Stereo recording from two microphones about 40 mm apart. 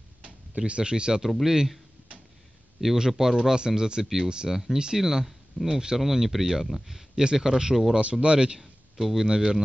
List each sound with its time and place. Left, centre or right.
0.6 s speech: right
2.8 s speech: centre
8.0 s speech: right
8.5 s a sound: centre
9.3 s speech: right